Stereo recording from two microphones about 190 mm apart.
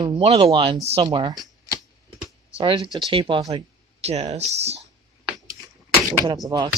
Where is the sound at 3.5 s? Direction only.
35° right (ahead or behind).